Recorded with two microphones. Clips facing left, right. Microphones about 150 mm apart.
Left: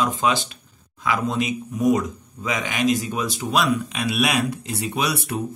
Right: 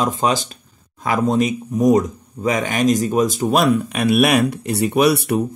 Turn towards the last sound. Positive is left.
turn(degrees=-65)  # may be behind; listen again after turning